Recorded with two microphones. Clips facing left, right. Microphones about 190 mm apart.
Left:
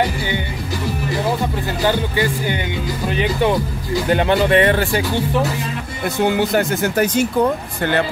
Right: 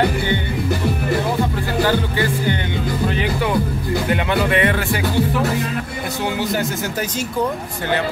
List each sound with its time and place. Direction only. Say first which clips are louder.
1.9 s music: left 4 dB; 15° left (ahead or behind)
3.1 s speech: left 8 dB; 20° left (ahead or behind)
4.1 s speech: left 5 dB; 35° left (ahead or behind)
6.4 s speech: left 4 dB; 60° left (ahead or behind)